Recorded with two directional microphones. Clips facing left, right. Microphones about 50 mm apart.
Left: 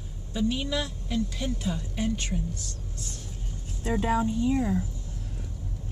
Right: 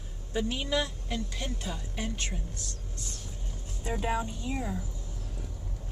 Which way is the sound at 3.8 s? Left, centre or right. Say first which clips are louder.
Left 5 dB; left.